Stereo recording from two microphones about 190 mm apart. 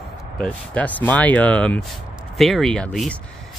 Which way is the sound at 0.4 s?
5° left (ahead or behind).